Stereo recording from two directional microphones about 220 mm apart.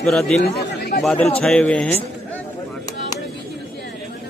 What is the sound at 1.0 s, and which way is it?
Speech, 5° left (ahead or behind).